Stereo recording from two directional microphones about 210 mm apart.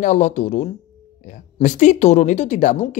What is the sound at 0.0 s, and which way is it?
Speech, 35° left (ahead or behind).